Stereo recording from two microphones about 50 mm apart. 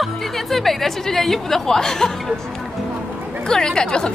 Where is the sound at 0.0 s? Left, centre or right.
Centre.